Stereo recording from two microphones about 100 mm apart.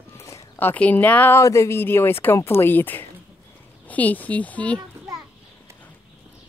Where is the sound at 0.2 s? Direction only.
30° left (ahead or behind).